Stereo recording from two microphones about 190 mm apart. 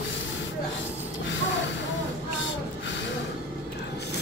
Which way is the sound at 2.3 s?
75° left (ahead or behind).